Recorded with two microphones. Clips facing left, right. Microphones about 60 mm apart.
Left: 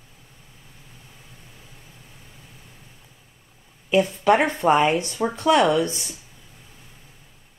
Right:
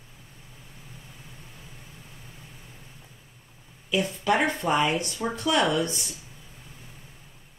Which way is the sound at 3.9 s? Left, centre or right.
Left.